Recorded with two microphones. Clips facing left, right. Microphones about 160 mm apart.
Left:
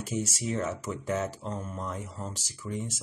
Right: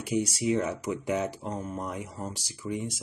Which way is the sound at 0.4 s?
15° right (ahead or behind).